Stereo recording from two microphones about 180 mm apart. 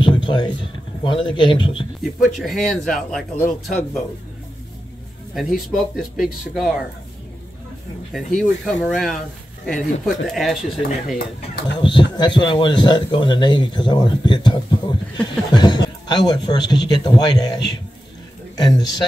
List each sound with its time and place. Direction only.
0.0 s a sound: 25° left (ahead or behind)
1.0 s a man's voice: 25° left (ahead or behind)
2.2 s speech: centre (ahead or behind)
5.3 s speech: centre (ahead or behind)
8.1 s speech: centre (ahead or behind)
11.1 s speech: 60° left (ahead or behind)
11.8 s a man's voice: 25° left (ahead or behind)
18.7 s a man's voice: 25° left (ahead or behind)